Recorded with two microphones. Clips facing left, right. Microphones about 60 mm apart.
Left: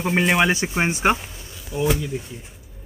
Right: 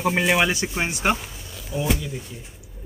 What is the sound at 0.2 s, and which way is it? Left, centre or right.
Speech, centre.